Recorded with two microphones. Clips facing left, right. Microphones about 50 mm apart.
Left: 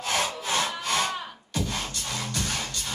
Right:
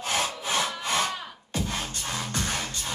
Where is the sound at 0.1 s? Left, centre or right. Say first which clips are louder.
Left 1 dB; right.